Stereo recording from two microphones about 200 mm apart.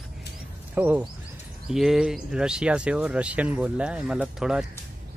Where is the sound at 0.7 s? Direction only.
10° right (ahead or behind).